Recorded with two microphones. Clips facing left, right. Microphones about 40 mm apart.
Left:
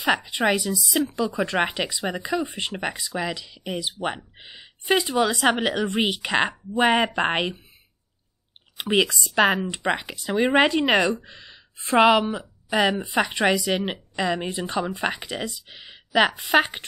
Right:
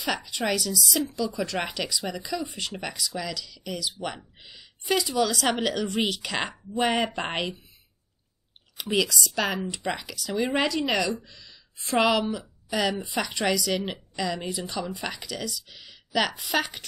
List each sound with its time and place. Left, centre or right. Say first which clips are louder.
0.0 s a woman's voice: left 6 dB; left
8.7 s speech: left 4 dB; left